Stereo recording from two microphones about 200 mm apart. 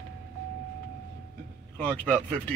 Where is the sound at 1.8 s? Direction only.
5° left (ahead or behind).